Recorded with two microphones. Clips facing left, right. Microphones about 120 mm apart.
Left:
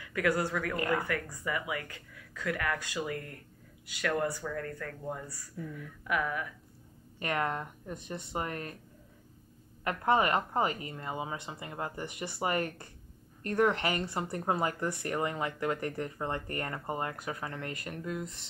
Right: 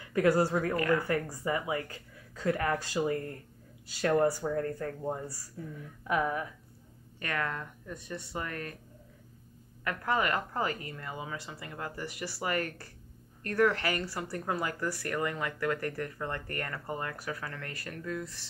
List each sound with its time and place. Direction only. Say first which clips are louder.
0.0 s speech: right 4 dB; 30° right (ahead or behind)
0.7 s speech: right 2 dB; 25° left (ahead or behind)
1.0 s speech: right 4 dB; 30° right (ahead or behind)
7.2 s speech: left 2 dB; 25° left (ahead or behind)
9.8 s speech: left 3 dB; 25° left (ahead or behind)